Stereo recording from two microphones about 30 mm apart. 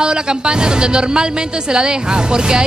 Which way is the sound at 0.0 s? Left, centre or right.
Right.